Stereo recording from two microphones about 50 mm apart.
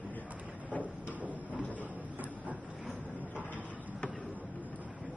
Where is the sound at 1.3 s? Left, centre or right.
Left.